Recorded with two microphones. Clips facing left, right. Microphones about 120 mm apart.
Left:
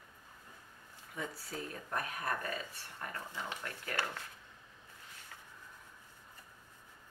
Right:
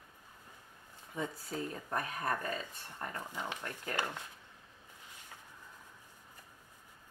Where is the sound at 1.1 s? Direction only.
20° right (ahead or behind).